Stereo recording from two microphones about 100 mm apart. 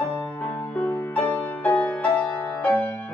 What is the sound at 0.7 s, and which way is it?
Music, 15° left (ahead or behind).